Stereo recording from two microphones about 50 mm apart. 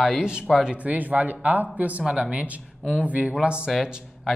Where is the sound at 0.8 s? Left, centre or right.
Right.